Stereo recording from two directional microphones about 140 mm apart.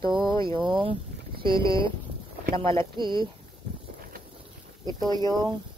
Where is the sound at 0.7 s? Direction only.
35° right (ahead or behind).